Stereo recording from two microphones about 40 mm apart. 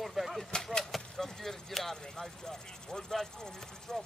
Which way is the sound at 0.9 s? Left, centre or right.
Centre.